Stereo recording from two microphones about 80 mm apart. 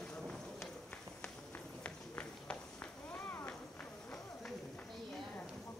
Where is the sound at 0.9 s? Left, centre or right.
Centre.